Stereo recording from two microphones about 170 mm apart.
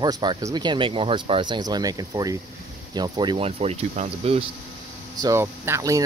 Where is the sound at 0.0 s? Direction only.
25° right (ahead or behind).